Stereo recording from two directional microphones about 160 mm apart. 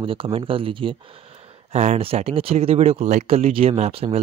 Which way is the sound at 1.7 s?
45° right (ahead or behind).